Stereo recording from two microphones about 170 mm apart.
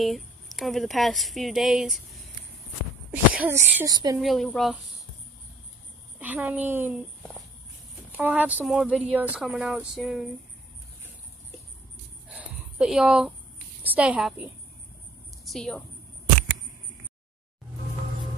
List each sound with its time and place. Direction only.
0.0 s a woman's voice: centre (ahead or behind)
3.1 s speech: 10° right (ahead or behind)
4.2 s a woman's voice: centre (ahead or behind)
6.1 s a woman's voice: 10° right (ahead or behind)
8.1 s a woman's voice: 10° right (ahead or behind)
12.4 s a sound: 5° right (ahead or behind)
13.8 s a woman's voice: 5° right (ahead or behind)